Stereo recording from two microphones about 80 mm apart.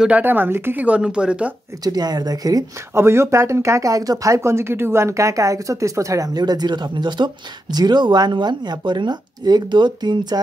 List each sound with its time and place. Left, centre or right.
0.2 s speech: right
1.9 s speech: right
2.9 s speech: right
6.3 s speech: right